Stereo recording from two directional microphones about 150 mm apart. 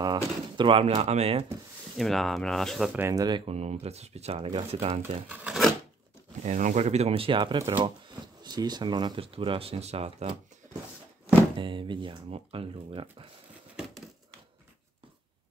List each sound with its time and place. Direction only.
0.0 s speech: 30° right (ahead or behind)
2.0 s speech: centre (ahead or behind)
2.9 s speech: 20° right (ahead or behind)
3.5 s speech: 45° right (ahead or behind)
5.3 s filing: 5° right (ahead or behind)
6.4 s speech: 55° right (ahead or behind)
11.5 s speech: 35° right (ahead or behind)